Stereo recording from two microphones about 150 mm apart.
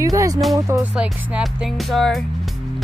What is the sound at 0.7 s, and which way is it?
Music, 5° right (ahead or behind).